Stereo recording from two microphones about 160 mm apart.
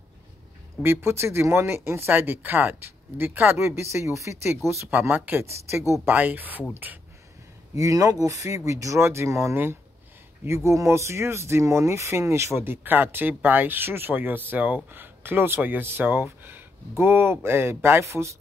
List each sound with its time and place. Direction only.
0.8 s speech: 15° right (ahead or behind)